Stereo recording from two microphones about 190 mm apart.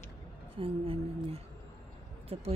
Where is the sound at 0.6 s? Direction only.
30° right (ahead or behind).